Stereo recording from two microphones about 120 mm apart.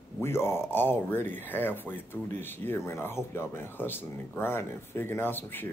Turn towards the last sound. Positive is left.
turn(degrees=15)  # may be behind; listen again after turning